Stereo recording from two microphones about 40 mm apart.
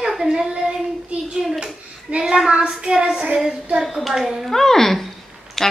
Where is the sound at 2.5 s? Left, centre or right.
Right.